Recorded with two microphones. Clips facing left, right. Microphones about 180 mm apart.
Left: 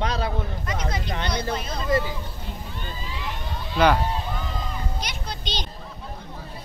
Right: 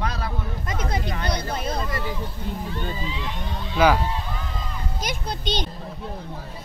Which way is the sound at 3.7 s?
5° right (ahead or behind).